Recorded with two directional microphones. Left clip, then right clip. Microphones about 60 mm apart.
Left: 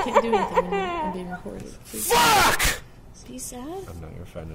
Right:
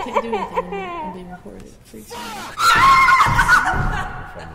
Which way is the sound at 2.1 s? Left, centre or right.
Left.